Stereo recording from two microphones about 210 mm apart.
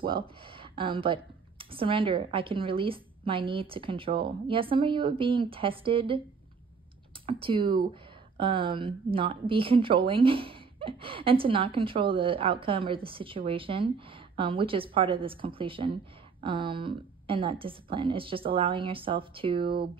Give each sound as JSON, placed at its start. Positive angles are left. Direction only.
{"t": 0.5, "sound": "a woman's voice", "side_deg": -25}
{"t": 7.2, "sound": "a woman's voice", "side_deg": -25}